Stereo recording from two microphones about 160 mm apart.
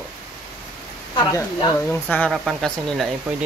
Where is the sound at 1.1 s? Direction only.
25° left (ahead or behind).